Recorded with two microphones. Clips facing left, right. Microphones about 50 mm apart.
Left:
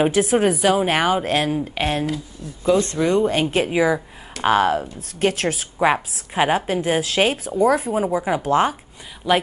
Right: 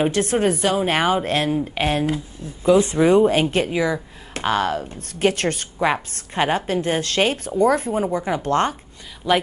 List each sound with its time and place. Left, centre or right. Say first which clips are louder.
0.0 s a woman's voice: left 2 dB; centre
2.0 s speech: right 2 dB; right
2.6 s speech: right 3 dB; centre
3.7 s a woman's voice: left 3 dB; centre